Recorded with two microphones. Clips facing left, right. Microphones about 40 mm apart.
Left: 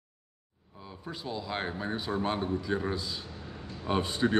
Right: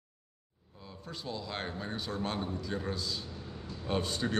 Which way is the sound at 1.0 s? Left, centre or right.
Centre.